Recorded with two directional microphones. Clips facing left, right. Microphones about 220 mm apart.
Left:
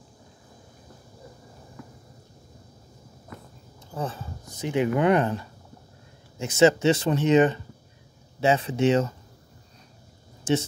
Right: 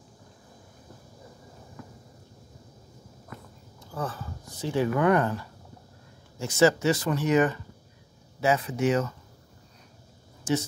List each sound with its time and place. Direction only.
3.9 s speech: 20° left (ahead or behind)
10.5 s speech: 25° left (ahead or behind)